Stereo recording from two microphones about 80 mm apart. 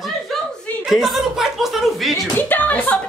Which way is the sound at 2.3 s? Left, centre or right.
Left.